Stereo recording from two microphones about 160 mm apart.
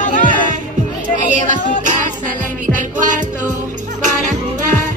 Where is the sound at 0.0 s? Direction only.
55° left (ahead or behind).